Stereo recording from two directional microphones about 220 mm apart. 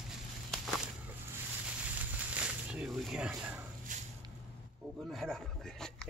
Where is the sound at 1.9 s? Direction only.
5° right (ahead or behind).